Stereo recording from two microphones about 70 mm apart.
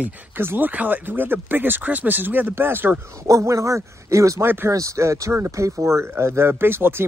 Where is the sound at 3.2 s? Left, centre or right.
Right.